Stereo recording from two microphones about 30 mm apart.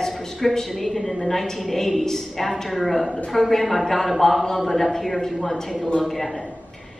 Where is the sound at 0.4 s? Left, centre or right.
Centre.